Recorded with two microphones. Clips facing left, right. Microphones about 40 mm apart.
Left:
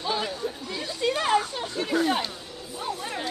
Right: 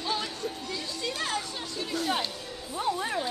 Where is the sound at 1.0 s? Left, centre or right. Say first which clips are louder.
Left 10 dB; left.